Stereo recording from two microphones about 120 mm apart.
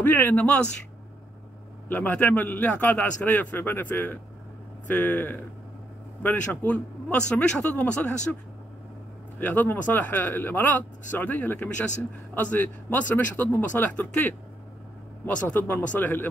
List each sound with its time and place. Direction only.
0.0 s a man's voice: 15° left (ahead or behind)
1.9 s a man's voice: 15° left (ahead or behind)
9.4 s a man's voice: 15° left (ahead or behind)